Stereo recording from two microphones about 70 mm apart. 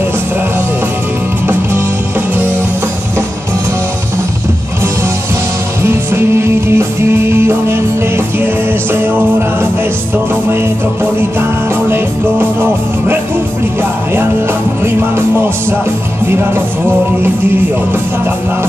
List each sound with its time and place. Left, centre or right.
5.8 s music: right
8.9 s music: right
11.1 s music: right
14.9 s music: right
16.3 s music: right